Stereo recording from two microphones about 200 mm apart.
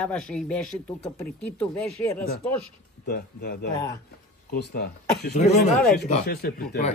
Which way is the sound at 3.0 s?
50° left (ahead or behind).